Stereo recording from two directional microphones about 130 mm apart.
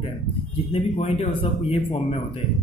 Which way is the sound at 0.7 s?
55° left (ahead or behind).